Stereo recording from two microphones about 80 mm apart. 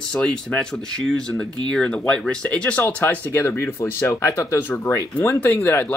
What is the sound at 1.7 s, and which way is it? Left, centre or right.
Speech, centre.